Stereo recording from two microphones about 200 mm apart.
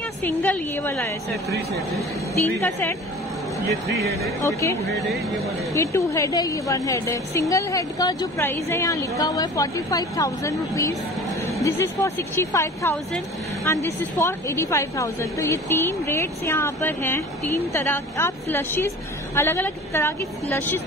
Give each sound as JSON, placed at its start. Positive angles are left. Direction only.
{"t": 0.2, "sound": "a woman's voice", "side_deg": 10}
{"t": 2.4, "sound": "a woman's voice", "side_deg": 10}
{"t": 4.4, "sound": "a woman's voice", "side_deg": 15}
{"t": 4.8, "sound": "speech", "side_deg": -60}
{"t": 5.7, "sound": "a woman's voice", "side_deg": 15}